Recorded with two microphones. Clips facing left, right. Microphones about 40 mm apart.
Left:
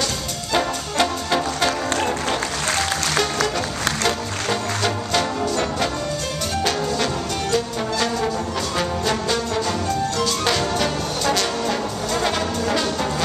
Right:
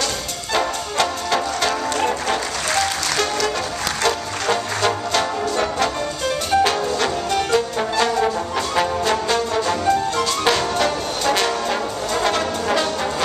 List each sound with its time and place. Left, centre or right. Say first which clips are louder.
0.5 s music: right 1 dB; centre
4.0 s music: right 2 dB; centre